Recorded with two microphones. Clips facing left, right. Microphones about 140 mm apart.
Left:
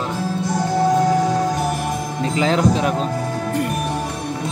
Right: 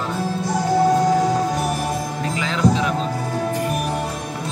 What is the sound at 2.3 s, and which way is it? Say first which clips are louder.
Music: left 3 dB; 40° left (ahead or behind).